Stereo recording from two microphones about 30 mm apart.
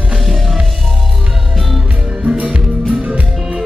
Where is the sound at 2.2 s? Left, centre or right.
Right.